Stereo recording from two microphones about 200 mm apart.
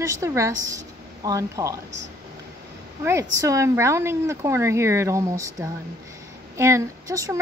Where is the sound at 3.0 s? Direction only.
15° right (ahead or behind).